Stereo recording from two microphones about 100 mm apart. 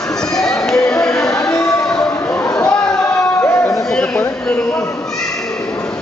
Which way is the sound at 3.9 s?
10° left (ahead or behind).